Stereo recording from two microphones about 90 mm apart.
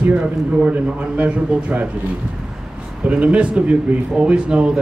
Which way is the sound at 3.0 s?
15° right (ahead or behind).